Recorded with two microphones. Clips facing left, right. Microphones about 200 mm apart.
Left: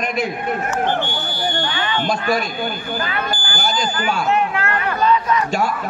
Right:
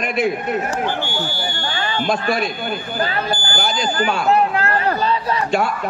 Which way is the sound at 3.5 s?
40° left (ahead or behind).